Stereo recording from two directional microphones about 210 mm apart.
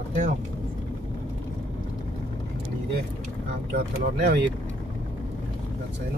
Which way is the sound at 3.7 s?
50° right (ahead or behind).